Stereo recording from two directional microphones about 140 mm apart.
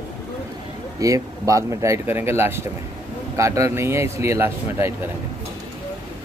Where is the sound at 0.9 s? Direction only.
25° right (ahead or behind).